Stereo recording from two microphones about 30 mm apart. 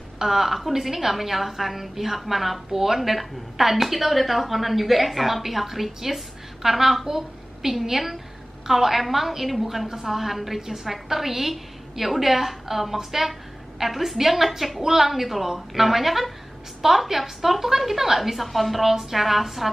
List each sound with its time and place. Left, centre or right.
0.2 s a woman's voice: centre
9.8 s a woman's voice: centre